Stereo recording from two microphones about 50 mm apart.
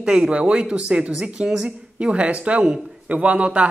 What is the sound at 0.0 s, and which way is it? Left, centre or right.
Speech, centre.